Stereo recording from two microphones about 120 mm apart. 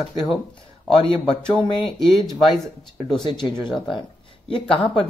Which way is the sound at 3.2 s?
40° left (ahead or behind).